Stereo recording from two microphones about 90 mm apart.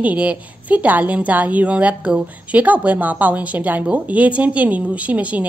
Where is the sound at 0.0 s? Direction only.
15° right (ahead or behind).